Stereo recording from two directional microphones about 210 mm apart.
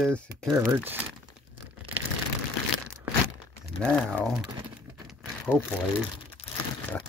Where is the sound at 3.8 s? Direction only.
5° left (ahead or behind).